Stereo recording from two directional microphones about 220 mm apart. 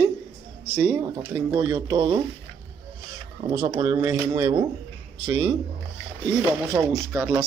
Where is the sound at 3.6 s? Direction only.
15° right (ahead or behind).